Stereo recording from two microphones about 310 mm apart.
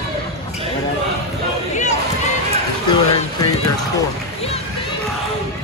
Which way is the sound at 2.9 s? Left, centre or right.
Centre.